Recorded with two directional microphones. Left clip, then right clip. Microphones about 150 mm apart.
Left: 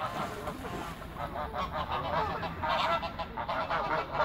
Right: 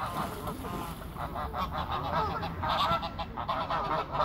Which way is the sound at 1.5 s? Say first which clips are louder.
Even; 10° right (ahead or behind).